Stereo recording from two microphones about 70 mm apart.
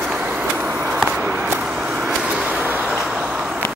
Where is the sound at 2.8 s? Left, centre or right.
Centre.